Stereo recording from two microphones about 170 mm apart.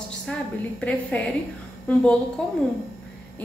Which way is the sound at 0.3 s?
5° left (ahead or behind).